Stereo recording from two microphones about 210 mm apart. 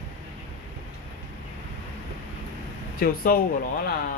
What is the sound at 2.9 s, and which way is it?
Speech, 45° left (ahead or behind).